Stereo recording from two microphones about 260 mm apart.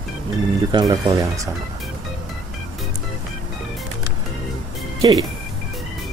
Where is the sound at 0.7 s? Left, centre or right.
Centre.